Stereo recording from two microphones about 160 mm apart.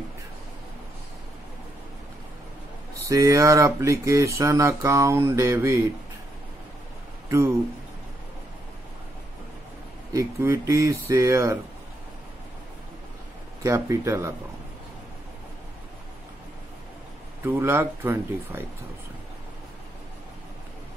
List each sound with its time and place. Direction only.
3.1 s speech: 20° right (ahead or behind)
7.2 s speech: 15° right (ahead or behind)
10.1 s speech: 20° right (ahead or behind)
13.7 s speech: 20° right (ahead or behind)
17.5 s speech: 15° right (ahead or behind)